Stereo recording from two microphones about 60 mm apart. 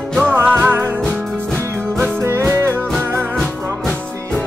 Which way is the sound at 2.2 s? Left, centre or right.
Right.